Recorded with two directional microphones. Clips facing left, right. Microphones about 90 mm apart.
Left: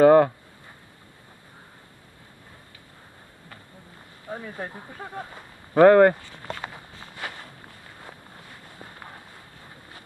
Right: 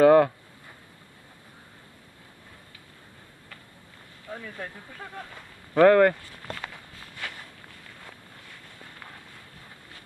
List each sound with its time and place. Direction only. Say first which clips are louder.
0.0 s speech: left 2 dB; 10° left (ahead or behind)
4.3 s speech: left 3 dB; 25° left (ahead or behind)
6.5 s walk: left 3 dB; 15° left (ahead or behind)
7.8 s a sound: left 3 dB; 25° left (ahead or behind)